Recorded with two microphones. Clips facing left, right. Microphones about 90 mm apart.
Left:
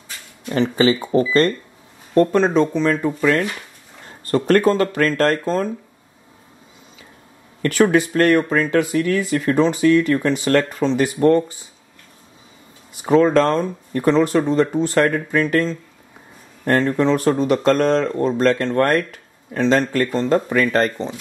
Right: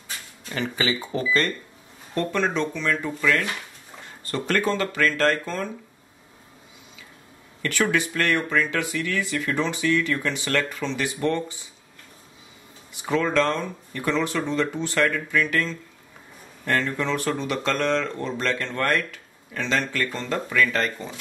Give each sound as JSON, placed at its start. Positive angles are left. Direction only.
{"t": 0.5, "sound": "speech", "side_deg": 35}
{"t": 7.6, "sound": "speech", "side_deg": 40}
{"t": 12.9, "sound": "speech", "side_deg": 35}